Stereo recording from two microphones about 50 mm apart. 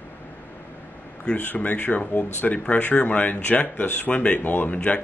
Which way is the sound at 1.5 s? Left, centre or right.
Left.